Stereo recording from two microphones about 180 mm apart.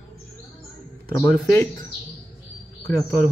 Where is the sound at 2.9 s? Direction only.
15° left (ahead or behind).